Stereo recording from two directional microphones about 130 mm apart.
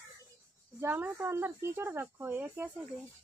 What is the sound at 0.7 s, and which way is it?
Speech, 15° right (ahead or behind).